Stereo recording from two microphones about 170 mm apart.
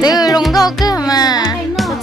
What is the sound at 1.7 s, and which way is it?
Music, centre (ahead or behind).